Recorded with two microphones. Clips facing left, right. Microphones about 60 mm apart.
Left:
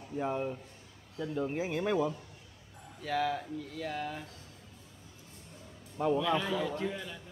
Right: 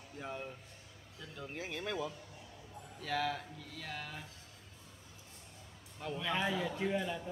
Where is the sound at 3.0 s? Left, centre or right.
Centre.